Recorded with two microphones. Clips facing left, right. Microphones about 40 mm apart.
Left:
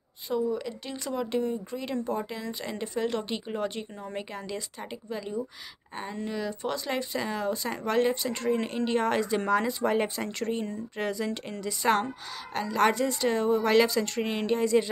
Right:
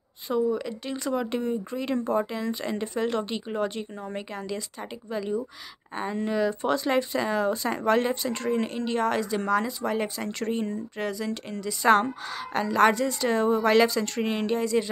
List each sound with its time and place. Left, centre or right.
0.3 s speech: centre
5.9 s speech: centre
8.6 s speech: centre
10.4 s speech: centre
11.0 s speech: centre
12.5 s speech: centre
12.9 s speech: centre
13.4 s speech: centre
14.6 s speech: centre